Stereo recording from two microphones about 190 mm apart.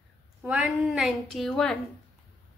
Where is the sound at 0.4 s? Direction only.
5° right (ahead or behind).